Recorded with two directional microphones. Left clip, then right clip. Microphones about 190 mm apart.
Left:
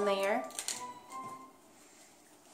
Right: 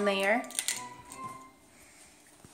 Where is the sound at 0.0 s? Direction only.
20° right (ahead or behind).